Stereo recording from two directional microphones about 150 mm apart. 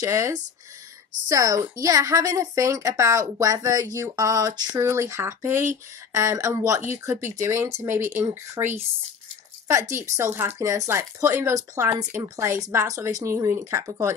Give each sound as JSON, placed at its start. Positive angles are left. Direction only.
{"t": 0.0, "sound": "speech", "side_deg": -20}